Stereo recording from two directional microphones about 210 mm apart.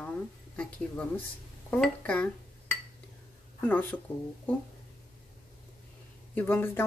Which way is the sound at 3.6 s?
5° left (ahead or behind).